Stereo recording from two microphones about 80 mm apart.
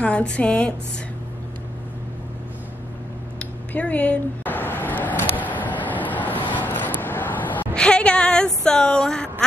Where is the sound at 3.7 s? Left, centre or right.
Centre.